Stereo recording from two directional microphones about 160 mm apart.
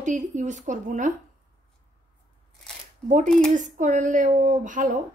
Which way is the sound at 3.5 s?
50° right (ahead or behind).